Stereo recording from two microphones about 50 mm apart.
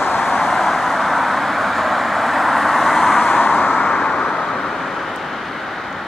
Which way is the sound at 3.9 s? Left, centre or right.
Centre.